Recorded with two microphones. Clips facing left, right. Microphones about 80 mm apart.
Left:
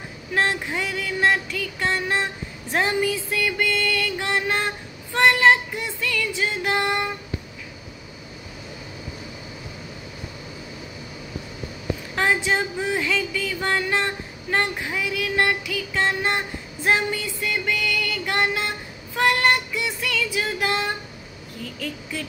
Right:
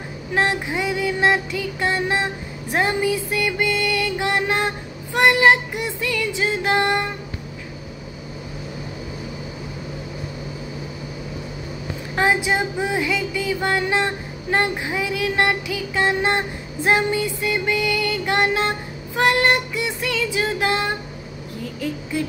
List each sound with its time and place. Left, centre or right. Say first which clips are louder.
0.3 s music: right 2 dB; centre
12.2 s music: right 3 dB; centre